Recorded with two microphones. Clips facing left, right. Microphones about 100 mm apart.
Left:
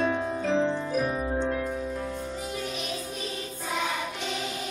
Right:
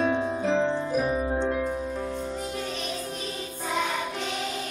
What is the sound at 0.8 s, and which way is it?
Music, 15° right (ahead or behind).